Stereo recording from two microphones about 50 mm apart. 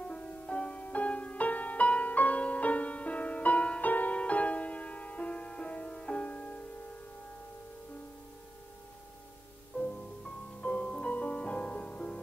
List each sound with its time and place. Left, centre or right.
0.0 s music: left
9.8 s music: left